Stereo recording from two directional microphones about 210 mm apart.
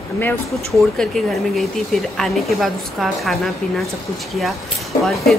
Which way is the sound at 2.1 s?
Centre (ahead or behind).